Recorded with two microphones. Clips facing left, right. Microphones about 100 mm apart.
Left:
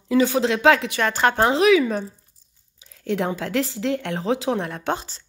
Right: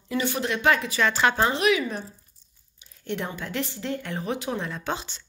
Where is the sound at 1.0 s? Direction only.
50° left (ahead or behind).